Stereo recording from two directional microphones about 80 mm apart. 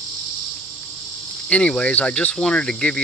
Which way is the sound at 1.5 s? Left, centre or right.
Centre.